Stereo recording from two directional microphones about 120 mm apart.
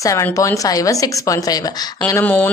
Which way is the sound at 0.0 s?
25° left (ahead or behind).